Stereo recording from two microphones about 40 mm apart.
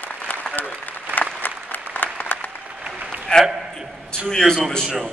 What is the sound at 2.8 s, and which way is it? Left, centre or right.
Applause, right.